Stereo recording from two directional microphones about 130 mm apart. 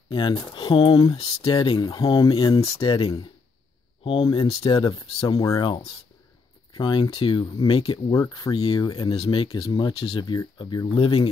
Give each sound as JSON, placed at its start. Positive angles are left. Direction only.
{"t": 0.1, "sound": "speech", "side_deg": 40}
{"t": 5.4, "sound": "speech", "side_deg": 25}
{"t": 6.7, "sound": "speech", "side_deg": 40}
{"t": 8.1, "sound": "speech", "side_deg": 25}
{"t": 8.5, "sound": "speech", "side_deg": 40}